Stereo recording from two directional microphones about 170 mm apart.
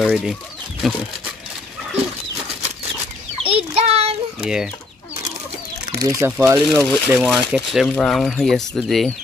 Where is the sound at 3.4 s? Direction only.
35° right (ahead or behind).